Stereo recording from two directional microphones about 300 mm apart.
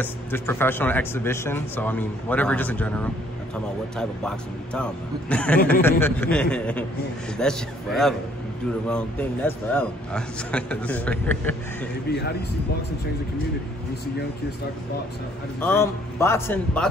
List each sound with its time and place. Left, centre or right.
0.0 s speech: centre
12.1 s speech: left
15.6 s speech: centre